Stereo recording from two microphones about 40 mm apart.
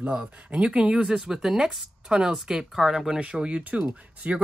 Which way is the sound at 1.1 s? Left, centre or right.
Centre.